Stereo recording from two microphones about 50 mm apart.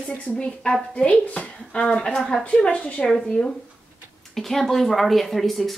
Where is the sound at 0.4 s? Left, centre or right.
Centre.